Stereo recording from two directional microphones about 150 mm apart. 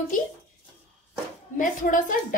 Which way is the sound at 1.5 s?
60° left (ahead or behind).